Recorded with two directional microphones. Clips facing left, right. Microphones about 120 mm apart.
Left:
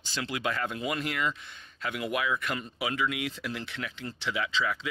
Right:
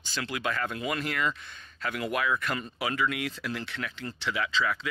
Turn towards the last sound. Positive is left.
turn(degrees=20)  # may be behind; listen again after turning